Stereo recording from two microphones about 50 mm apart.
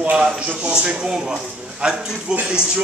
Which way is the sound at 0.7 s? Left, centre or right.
Centre.